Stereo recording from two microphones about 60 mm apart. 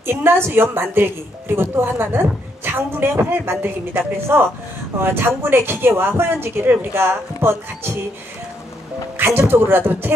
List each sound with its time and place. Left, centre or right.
0.0 s a woman's voice: right
9.1 s music: right
9.5 s a woman's voice: right